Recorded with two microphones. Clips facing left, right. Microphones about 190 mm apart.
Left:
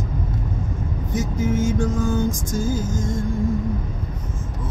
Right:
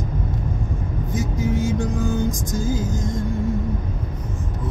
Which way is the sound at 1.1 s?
15° right (ahead or behind).